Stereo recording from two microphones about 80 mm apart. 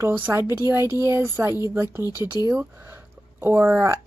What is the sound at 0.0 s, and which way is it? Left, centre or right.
Speech, right.